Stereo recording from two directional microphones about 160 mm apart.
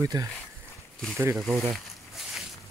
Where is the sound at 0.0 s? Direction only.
20° right (ahead or behind).